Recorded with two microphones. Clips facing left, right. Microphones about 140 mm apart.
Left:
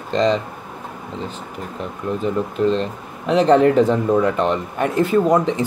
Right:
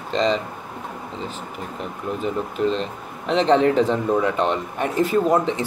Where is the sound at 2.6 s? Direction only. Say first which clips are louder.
Left 4 dB; 40° left (ahead or behind).